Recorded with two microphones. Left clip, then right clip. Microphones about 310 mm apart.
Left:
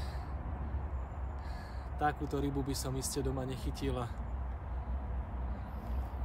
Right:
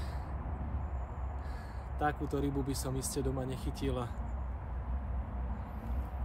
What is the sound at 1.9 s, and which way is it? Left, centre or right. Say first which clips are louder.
Speech: even; centre.